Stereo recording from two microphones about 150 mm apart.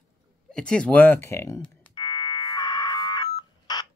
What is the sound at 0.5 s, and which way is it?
Speech, 5° left (ahead or behind).